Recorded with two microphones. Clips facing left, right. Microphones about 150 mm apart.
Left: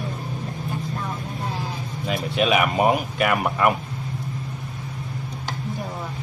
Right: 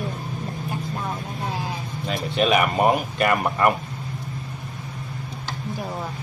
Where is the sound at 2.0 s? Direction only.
5° left (ahead or behind).